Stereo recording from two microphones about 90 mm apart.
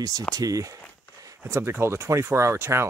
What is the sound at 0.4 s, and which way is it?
Speech, 40° right (ahead or behind).